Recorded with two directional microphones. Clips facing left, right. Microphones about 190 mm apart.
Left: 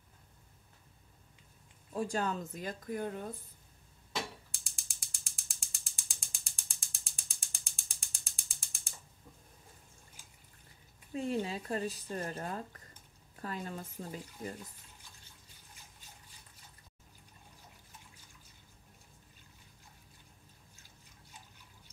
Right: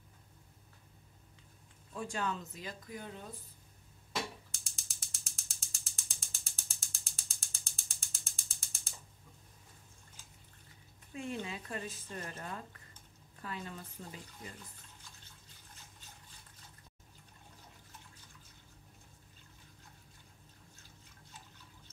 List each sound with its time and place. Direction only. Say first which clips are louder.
2.0 s speech: left 4 dB; 40° left (ahead or behind)
4.6 s ratchet: right 1 dB; centre (ahead or behind)
11.1 s speech: left 6 dB; 35° left (ahead or behind)